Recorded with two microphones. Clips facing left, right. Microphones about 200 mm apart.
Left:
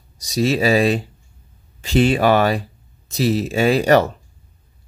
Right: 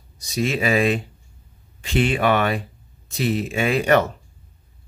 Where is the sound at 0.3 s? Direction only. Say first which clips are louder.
Left 4 dB; 35° left (ahead or behind).